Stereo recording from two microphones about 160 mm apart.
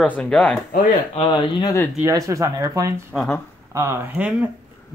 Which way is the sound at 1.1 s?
30° left (ahead or behind).